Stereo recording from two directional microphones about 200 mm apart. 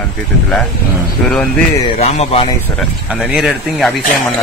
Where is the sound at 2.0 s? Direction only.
30° left (ahead or behind).